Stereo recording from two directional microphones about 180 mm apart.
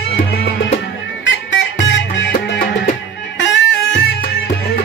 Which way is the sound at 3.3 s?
85° left.